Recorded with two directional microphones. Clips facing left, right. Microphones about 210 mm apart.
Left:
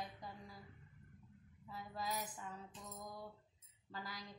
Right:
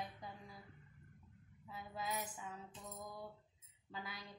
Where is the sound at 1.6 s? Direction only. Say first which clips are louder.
Even; 5° right (ahead or behind).